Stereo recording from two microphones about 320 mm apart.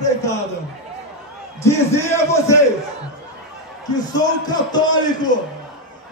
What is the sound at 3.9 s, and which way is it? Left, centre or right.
A man's voice, centre.